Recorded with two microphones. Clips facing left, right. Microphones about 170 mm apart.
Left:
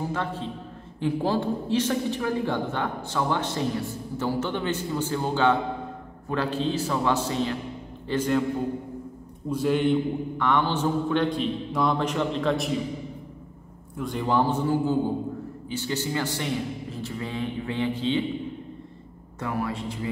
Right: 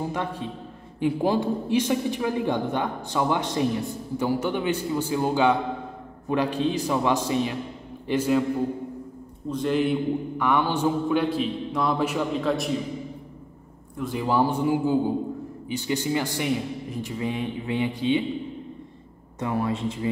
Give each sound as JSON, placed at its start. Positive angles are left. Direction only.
{"t": 0.1, "sound": "a woman's voice", "side_deg": -15}
{"t": 9.5, "sound": "a man's voice", "side_deg": 5}
{"t": 13.9, "sound": "a woman's voice", "side_deg": -5}
{"t": 19.4, "sound": "speech", "side_deg": -25}